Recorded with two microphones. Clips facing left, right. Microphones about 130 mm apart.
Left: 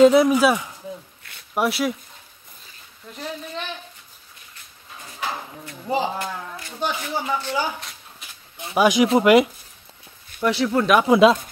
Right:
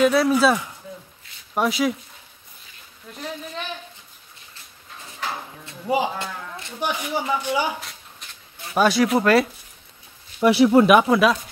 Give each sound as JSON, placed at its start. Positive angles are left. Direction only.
{"t": 0.0, "sound": "speech", "side_deg": 20}
{"t": 1.5, "sound": "speech", "side_deg": 5}
{"t": 3.1, "sound": "speech", "side_deg": 0}
{"t": 5.9, "sound": "speech", "side_deg": -10}
{"t": 8.2, "sound": "a sound", "side_deg": 5}
{"t": 8.7, "sound": "speech", "side_deg": 15}
{"t": 10.4, "sound": "speech", "side_deg": -15}
{"t": 11.1, "sound": "speech", "side_deg": 25}